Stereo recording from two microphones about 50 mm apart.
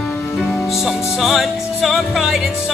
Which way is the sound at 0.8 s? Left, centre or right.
Centre.